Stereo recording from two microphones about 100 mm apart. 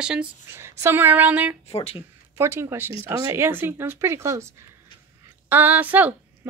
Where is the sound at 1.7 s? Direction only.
85° left.